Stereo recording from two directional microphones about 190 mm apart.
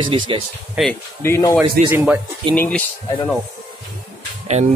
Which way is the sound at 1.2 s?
10° left (ahead or behind).